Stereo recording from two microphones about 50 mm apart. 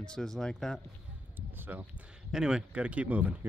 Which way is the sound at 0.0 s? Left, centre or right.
Centre.